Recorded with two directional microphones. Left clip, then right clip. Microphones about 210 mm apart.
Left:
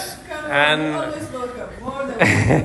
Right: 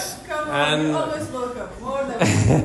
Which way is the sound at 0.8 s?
Centre (ahead or behind).